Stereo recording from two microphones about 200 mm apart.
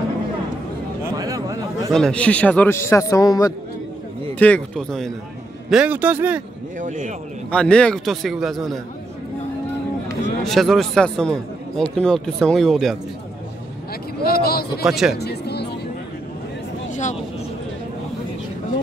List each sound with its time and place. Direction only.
1.1 s a sound: 15° right (ahead or behind)
1.9 s a man's voice: centre (ahead or behind); by 3.5 s 20° left (ahead or behind)
4.4 s a man's voice: 5° left (ahead or behind)
6.8 s a man's voice: 40° right (ahead or behind)
7.5 s a man's voice: 5° left (ahead or behind)
10.4 s a man's voice: centre (ahead or behind)
14.2 s a sound: 50° left (ahead or behind)
14.8 s a man's voice: centre (ahead or behind)
15.1 s music: 55° left (ahead or behind)
16.9 s a sound: 40° left (ahead or behind)